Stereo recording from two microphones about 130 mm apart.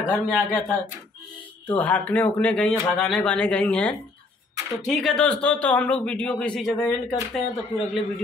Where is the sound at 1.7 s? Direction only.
10° left (ahead or behind).